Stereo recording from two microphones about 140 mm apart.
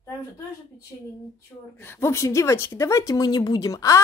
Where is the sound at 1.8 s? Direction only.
15° left (ahead or behind).